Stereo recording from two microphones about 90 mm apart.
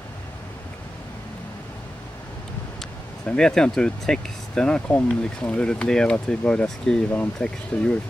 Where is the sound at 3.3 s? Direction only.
10° left (ahead or behind).